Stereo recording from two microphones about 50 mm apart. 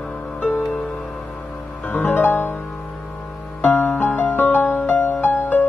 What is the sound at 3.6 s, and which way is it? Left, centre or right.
Music, left.